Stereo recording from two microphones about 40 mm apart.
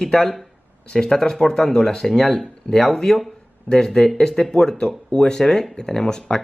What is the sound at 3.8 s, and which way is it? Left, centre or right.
Speech, centre.